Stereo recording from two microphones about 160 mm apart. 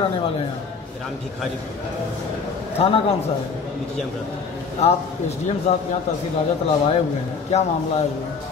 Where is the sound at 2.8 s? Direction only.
40° left (ahead or behind).